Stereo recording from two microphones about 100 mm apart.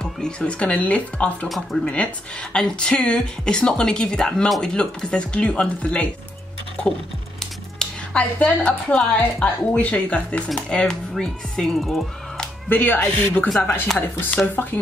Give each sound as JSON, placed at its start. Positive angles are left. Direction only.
{"t": 0.0, "sound": "speech", "side_deg": 10}
{"t": 7.8, "sound": "music", "side_deg": 10}
{"t": 8.6, "sound": "speech", "side_deg": 10}
{"t": 12.6, "sound": "speech", "side_deg": 15}